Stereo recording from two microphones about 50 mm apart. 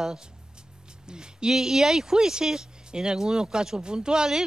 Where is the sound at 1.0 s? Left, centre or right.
Centre.